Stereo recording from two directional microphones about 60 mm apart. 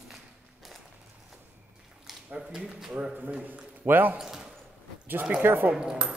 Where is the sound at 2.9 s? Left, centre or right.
Right.